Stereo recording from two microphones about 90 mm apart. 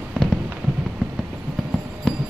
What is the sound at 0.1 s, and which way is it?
Fireworks, 5° left (ahead or behind).